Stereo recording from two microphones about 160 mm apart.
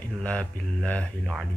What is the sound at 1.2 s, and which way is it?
Speech, 5° right (ahead or behind).